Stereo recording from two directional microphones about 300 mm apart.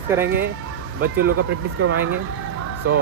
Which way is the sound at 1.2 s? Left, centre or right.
Right.